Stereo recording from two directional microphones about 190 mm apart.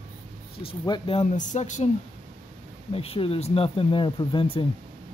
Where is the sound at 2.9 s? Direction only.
30° left (ahead or behind).